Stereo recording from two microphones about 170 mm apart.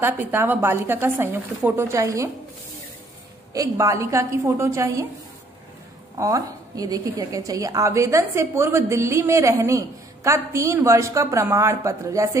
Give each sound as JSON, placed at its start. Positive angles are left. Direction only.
{"t": 0.0, "sound": "a woman's voice", "side_deg": -15}
{"t": 3.5, "sound": "a woman's voice", "side_deg": -20}
{"t": 6.1, "sound": "a woman's voice", "side_deg": -20}